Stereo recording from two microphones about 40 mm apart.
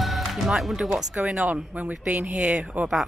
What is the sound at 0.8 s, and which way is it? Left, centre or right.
Speech, right.